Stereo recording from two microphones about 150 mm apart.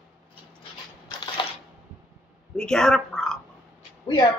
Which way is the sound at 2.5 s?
5° left (ahead or behind).